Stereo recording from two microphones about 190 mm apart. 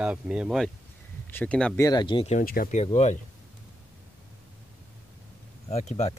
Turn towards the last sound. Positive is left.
turn(degrees=35)  # may be behind; listen again after turning